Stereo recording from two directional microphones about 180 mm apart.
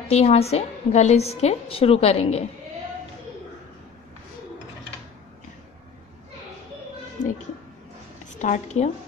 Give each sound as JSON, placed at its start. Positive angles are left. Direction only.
{"t": 0.1, "sound": "a woman's voice", "side_deg": 35}
{"t": 8.4, "sound": "a woman's voice", "side_deg": 40}